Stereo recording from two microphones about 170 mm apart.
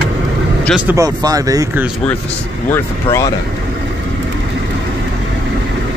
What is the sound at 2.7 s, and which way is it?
Speech, 15° left (ahead or behind).